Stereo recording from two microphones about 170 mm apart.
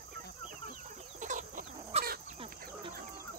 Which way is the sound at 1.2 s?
45° right (ahead or behind).